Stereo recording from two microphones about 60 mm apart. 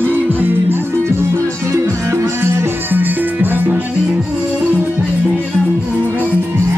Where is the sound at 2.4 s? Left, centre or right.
Right.